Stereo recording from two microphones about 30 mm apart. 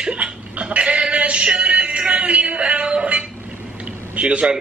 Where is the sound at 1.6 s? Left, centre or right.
Right.